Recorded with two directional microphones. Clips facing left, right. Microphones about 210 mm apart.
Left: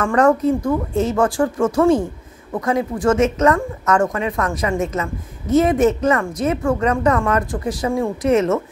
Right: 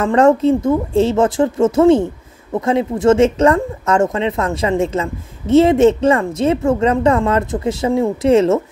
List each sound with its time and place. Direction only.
0.0 s speech: 25° right (ahead or behind)